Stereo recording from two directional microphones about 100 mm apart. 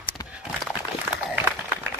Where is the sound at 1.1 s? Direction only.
15° right (ahead or behind).